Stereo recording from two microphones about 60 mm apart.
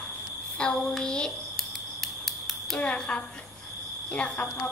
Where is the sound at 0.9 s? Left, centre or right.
Centre.